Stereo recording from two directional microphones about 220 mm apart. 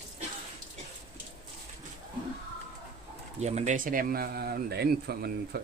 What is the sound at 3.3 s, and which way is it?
A man's voice, 30° right (ahead or behind).